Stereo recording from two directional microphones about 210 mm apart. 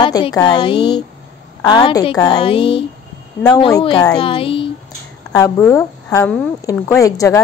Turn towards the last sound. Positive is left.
turn(degrees=15)  # may be behind; listen again after turning